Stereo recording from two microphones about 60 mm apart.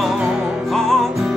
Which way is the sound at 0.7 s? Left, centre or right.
Centre.